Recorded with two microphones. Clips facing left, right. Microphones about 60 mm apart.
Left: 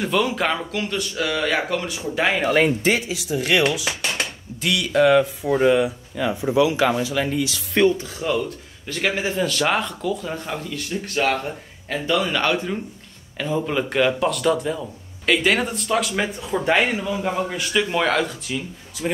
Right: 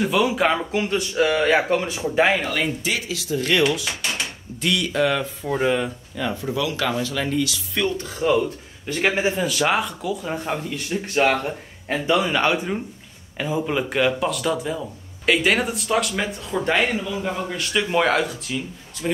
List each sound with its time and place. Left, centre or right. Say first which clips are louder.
0.0 s speech: right 2 dB; centre
0.7 s speech: right 3 dB; right
2.0 s speech: right 3 dB; centre
2.5 s speech: left 6 dB; left
3.1 s speech: left 1 dB; centre
3.3 s speech: even; centre
7.8 s speech: left 7 dB; left
8.2 s speech: right 4 dB; centre
9.4 s speech: even; centre
10.3 s speech: right 2 dB; centre
17.0 s speech: left 3 dB; centre
17.9 s speech: right 1 dB; centre